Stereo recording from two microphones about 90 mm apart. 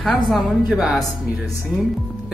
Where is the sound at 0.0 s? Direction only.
Centre (ahead or behind).